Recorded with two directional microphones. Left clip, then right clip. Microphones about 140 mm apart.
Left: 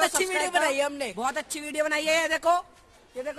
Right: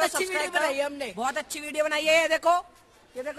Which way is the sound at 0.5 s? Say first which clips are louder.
Left 2 dB; 50° left (ahead or behind).